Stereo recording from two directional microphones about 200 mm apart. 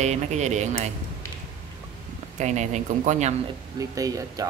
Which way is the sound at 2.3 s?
35° right (ahead or behind).